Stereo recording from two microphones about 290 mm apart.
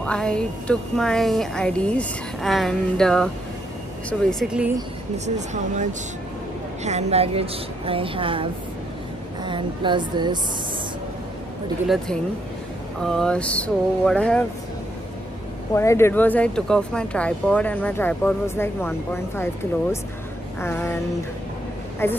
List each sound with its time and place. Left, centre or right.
0.0 s speech: centre
5.1 s a woman's voice: right
13.0 s speech: centre
15.7 s speech: centre
22.0 s speech: centre